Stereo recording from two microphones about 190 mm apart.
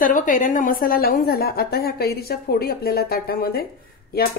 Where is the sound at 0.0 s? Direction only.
45° left (ahead or behind).